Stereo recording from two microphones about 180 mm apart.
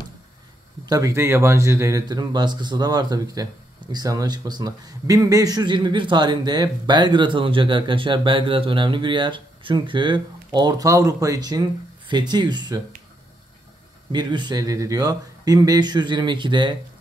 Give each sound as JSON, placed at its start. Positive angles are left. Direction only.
{"t": 0.8, "sound": "speech", "side_deg": -20}
{"t": 14.1, "sound": "speech", "side_deg": -25}